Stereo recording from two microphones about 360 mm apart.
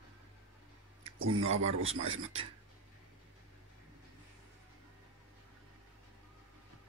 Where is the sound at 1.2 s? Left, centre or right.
Right.